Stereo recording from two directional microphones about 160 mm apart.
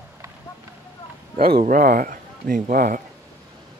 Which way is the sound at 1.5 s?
60° right (ahead or behind).